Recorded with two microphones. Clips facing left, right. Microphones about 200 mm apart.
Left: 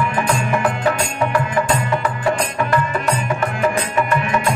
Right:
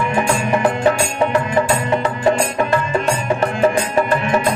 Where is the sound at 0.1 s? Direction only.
25° right (ahead or behind).